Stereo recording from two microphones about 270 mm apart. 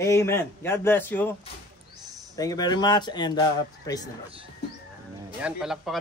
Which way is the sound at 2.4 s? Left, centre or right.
Centre.